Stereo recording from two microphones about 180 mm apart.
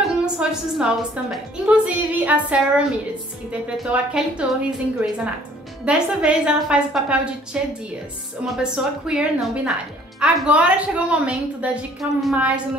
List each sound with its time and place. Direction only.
0.0 s a woman's voice: 5° right (ahead or behind)